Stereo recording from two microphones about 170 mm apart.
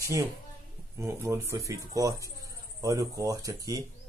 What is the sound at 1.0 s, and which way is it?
Speech, 15° right (ahead or behind).